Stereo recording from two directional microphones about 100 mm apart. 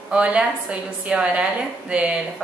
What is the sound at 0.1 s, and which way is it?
A woman's voice, 10° right (ahead or behind).